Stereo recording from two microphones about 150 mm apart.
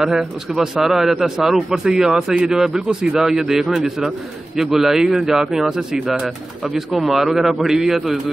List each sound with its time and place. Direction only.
0.0 s a man's voice: 5° right (ahead or behind)